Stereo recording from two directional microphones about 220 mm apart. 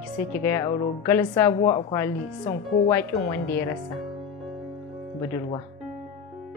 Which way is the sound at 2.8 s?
10° left (ahead or behind).